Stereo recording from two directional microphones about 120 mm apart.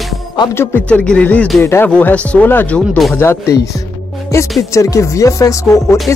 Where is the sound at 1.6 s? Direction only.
20° left (ahead or behind).